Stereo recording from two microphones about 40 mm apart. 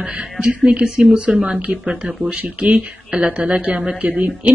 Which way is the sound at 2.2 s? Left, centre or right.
Right.